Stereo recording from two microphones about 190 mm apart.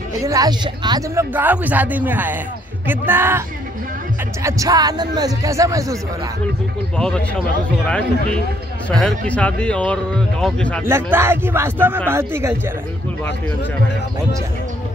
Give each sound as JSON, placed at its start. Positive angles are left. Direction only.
{"t": 0.2, "sound": "speech", "side_deg": -20}
{"t": 1.3, "sound": "a man's voice", "side_deg": -10}
{"t": 7.0, "sound": "speech", "side_deg": 5}
{"t": 8.9, "sound": "speech", "side_deg": 5}
{"t": 10.9, "sound": "a man's voice", "side_deg": -10}